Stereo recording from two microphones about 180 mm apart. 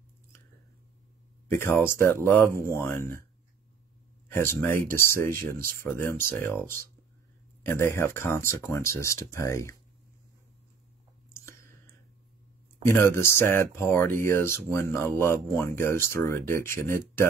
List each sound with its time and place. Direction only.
1.5 s speech: 15° left (ahead or behind)
4.3 s speech: 15° left (ahead or behind)
7.6 s speech: 15° left (ahead or behind)
11.2 s a sound: 15° left (ahead or behind)
12.8 s speech: 10° left (ahead or behind)